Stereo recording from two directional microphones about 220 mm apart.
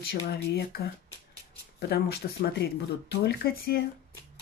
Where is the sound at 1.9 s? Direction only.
45° left (ahead or behind).